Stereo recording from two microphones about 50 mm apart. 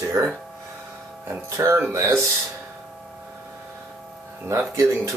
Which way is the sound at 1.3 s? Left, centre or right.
Right.